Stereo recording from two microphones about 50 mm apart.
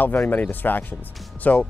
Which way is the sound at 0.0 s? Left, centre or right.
Left.